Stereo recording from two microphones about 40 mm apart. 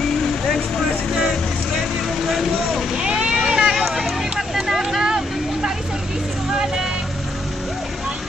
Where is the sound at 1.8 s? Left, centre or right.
Centre.